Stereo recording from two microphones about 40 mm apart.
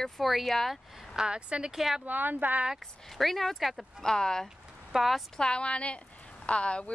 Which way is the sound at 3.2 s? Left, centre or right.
Centre.